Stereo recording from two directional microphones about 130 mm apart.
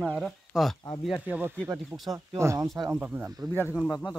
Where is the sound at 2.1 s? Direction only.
25° right (ahead or behind).